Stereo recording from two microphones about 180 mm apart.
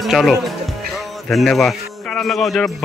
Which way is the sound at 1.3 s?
Centre (ahead or behind).